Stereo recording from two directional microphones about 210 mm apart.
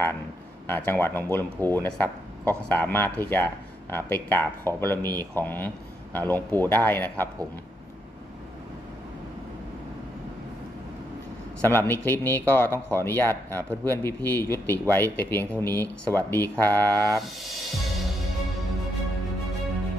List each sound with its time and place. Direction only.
0.7 s speech: 10° left (ahead or behind)
11.6 s speech: 10° left (ahead or behind)
15.5 s speech: 20° right (ahead or behind)
15.8 s speech: 10° left (ahead or behind)